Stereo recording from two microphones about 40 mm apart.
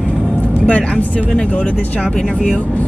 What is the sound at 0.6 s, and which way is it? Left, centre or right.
Speech, left.